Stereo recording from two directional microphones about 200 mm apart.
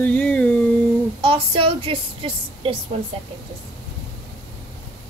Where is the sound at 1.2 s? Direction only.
25° right (ahead or behind).